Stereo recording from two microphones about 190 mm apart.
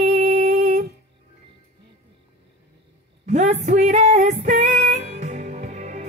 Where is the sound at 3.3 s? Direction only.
35° right (ahead or behind).